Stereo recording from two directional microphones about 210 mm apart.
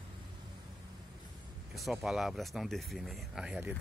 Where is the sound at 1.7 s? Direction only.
Centre (ahead or behind).